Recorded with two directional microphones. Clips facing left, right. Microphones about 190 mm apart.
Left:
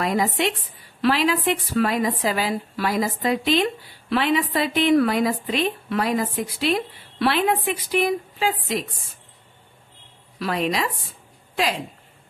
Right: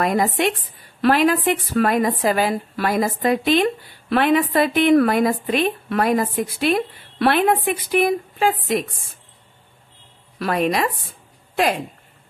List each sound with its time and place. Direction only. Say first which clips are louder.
0.0 s a woman's voice: right 3 dB; 50° right (ahead or behind)
10.4 s a woman's voice: right 4 dB; 55° right (ahead or behind)